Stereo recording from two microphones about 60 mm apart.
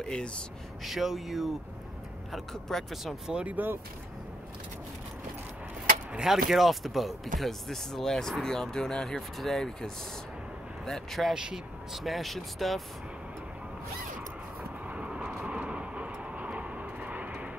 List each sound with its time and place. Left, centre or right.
0.0 s speech: centre
0.8 s speech: centre
3.3 s speech: centre
3.5 s speech: right
6.1 s speech: centre
11.3 s speech: centre
14.6 s vehicle: centre